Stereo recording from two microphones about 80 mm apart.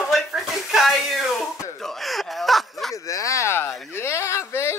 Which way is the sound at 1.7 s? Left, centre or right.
Centre.